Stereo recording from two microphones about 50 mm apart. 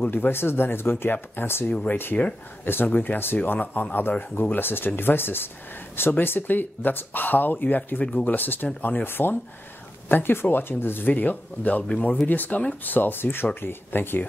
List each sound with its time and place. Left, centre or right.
0.0 s speech: left
8.6 s speech: left
9.0 s speech: left